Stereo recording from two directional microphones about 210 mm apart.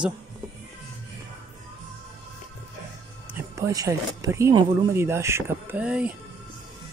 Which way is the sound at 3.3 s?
15° right (ahead or behind).